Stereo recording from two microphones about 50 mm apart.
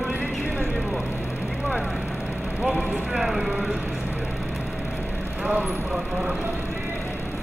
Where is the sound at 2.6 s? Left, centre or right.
Centre.